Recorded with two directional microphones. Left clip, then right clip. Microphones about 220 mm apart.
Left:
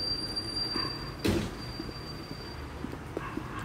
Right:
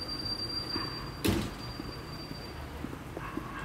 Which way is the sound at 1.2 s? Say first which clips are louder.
Left 1 dB; 45° right (ahead or behind).